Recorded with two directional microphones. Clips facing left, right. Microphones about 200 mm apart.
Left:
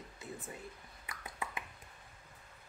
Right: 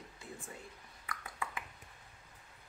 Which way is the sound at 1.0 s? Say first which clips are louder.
Right 1 dB; 20° left (ahead or behind).